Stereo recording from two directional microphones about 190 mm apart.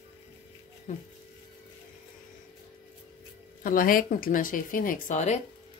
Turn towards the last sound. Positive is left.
turn(degrees=40)  # may be behind; listen again after turning